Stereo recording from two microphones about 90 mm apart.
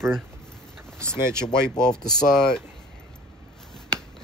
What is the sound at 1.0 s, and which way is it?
Speech, 30° right (ahead or behind).